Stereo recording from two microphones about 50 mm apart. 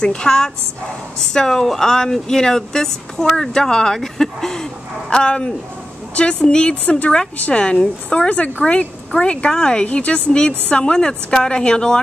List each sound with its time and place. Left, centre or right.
0.0 s speech: centre
9.8 s speech: left